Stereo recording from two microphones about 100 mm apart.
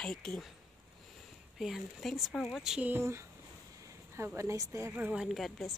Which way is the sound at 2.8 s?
25° right (ahead or behind).